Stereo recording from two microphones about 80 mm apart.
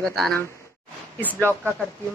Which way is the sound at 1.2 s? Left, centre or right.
Left.